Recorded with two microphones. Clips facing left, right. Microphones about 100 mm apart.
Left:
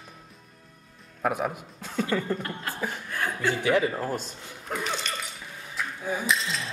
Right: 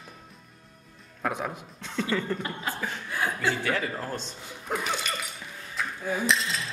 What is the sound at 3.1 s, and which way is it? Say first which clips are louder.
Chuckle: right 1 dB; 10° right (ahead or behind).